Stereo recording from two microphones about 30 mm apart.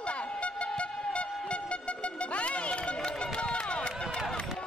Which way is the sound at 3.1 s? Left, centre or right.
Left.